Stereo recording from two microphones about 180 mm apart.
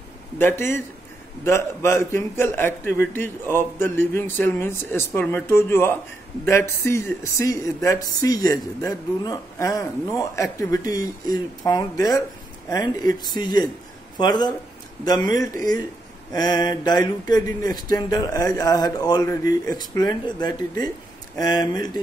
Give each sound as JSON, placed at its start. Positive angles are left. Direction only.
{"t": 0.4, "sound": "a man's voice", "side_deg": 10}